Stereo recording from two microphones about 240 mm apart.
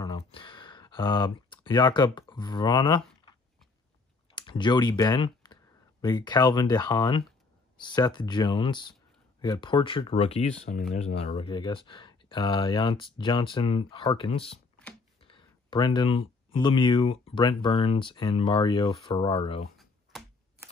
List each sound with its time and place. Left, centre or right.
0.0 s a sound: left
4.4 s speech: centre
19.8 s computer keyboard: centre